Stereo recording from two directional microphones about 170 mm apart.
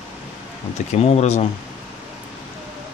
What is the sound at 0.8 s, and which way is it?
Speech, 40° left (ahead or behind).